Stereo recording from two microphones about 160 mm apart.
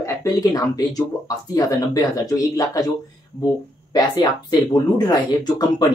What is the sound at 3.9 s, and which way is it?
Speech, 25° left (ahead or behind).